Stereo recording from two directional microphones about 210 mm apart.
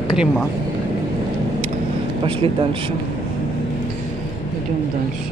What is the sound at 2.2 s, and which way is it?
Speech, 25° right (ahead or behind).